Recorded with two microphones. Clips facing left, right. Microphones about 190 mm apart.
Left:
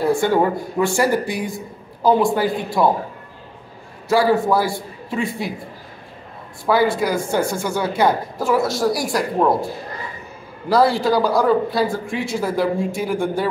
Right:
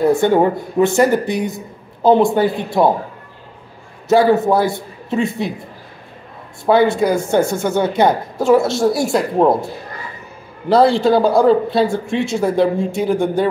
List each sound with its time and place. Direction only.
0.0 s a man's voice: 20° right (ahead or behind)
4.1 s a man's voice: 20° right (ahead or behind)
6.6 s a man's voice: 25° right (ahead or behind)
10.7 s a man's voice: 25° right (ahead or behind)